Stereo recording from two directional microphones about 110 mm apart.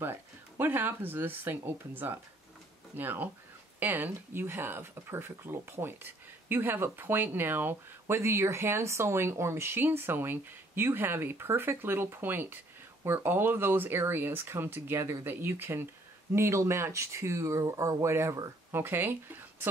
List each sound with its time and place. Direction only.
0.0 s speech: 20° right (ahead or behind)